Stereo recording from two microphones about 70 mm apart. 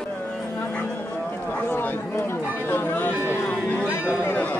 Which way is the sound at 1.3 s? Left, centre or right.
Left.